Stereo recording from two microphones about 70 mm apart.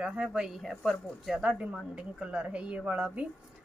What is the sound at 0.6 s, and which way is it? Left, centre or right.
Speech, centre.